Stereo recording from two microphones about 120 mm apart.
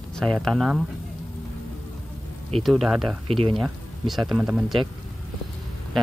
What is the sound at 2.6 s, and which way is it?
Speech, centre (ahead or behind).